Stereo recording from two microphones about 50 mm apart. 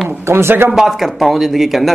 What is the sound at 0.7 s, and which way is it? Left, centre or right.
Speech, centre.